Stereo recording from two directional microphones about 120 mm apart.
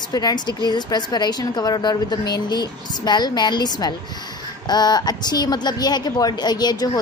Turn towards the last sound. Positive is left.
turn(degrees=35)  # may be behind; listen again after turning